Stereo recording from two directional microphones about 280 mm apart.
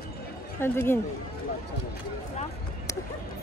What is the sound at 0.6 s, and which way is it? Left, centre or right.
Speech, centre.